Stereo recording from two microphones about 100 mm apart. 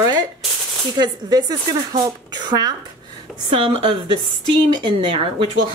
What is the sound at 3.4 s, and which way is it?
Speech, 60° right (ahead or behind).